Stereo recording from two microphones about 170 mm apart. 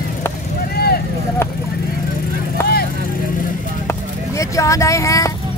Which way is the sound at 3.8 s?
20° left (ahead or behind).